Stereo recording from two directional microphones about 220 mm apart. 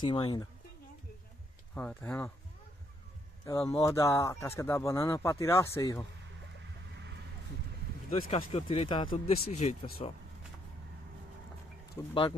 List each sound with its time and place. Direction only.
0.0 s speech: 20° left (ahead or behind)
1.8 s speech: 5° left (ahead or behind)
3.4 s speech: 15° left (ahead or behind)
8.1 s speech: 25° left (ahead or behind)
12.1 s speech: 25° left (ahead or behind)